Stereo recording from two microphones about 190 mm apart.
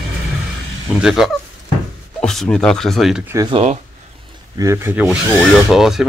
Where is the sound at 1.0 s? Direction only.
Centre (ahead or behind).